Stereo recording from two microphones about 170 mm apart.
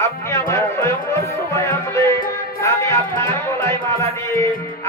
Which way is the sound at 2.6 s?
15° left (ahead or behind).